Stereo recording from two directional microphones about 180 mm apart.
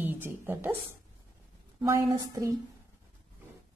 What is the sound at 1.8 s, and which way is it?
Speech, 15° right (ahead or behind).